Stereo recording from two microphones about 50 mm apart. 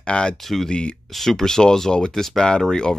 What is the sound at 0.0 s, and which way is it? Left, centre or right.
Speech, centre.